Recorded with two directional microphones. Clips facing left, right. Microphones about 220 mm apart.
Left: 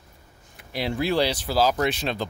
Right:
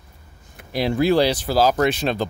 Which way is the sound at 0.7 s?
45° right (ahead or behind).